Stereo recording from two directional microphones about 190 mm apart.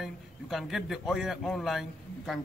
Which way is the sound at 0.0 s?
Centre (ahead or behind).